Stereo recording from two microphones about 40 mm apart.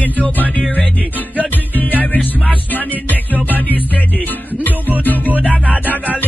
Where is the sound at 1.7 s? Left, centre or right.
Left.